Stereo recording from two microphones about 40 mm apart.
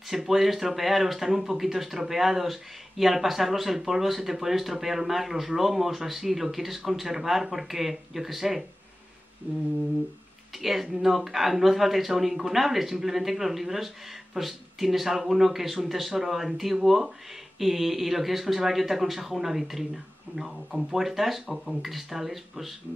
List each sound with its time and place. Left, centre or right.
0.1 s speech: centre
9.5 s humming: right
10.6 s speech: centre